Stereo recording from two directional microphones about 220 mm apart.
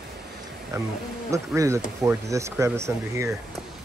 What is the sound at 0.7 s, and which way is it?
Speech, 15° right (ahead or behind).